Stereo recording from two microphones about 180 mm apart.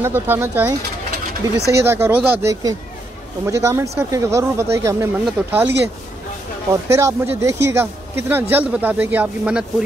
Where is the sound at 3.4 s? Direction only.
15° right (ahead or behind).